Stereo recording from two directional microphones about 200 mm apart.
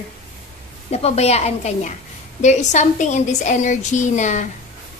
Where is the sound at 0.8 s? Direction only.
30° left (ahead or behind).